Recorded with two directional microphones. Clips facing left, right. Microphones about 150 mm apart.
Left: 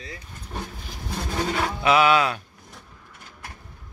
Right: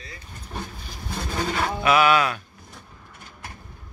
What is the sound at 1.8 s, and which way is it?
Speech, 25° left (ahead or behind).